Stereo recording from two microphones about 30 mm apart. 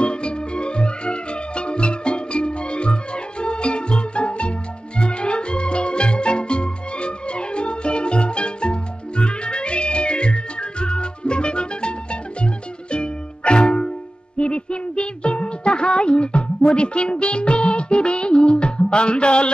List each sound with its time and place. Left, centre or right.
0.0 s music: left